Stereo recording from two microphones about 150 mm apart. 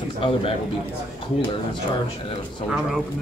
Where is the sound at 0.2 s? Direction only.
40° left (ahead or behind).